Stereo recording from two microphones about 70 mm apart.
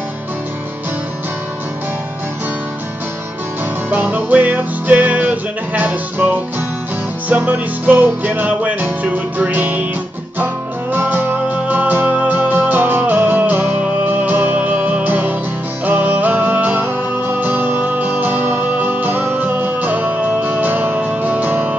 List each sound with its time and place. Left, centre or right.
3.9 s music: right